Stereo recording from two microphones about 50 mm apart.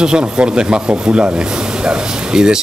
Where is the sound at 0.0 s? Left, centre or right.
Centre.